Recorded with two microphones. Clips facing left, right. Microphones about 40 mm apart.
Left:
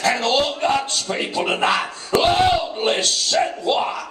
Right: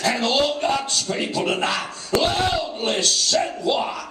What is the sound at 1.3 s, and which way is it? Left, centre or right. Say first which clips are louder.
Speech: left 5 dB; centre.